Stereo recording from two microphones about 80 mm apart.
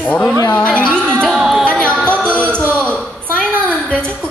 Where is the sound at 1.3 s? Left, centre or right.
Centre.